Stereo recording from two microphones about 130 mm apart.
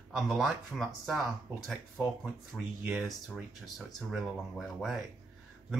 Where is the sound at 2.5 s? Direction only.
Centre (ahead or behind).